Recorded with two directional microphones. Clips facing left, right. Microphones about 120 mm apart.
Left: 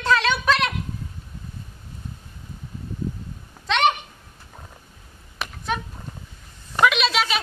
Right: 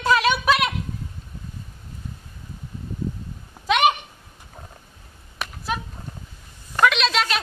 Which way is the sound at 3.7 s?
10° right (ahead or behind).